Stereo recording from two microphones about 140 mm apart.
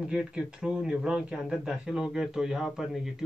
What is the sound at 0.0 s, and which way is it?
Speech, 5° right (ahead or behind).